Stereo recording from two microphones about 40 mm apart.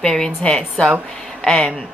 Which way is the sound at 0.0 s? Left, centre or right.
Centre.